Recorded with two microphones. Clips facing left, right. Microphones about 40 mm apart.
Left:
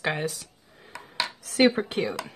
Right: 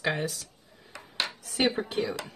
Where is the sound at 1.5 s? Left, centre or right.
Left.